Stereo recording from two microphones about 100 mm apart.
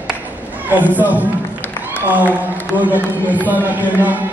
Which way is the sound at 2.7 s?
15° right (ahead or behind).